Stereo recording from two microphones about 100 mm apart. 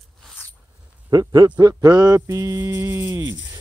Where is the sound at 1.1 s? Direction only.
45° right (ahead or behind).